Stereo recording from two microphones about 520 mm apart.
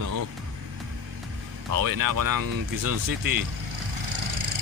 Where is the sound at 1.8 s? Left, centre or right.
Right.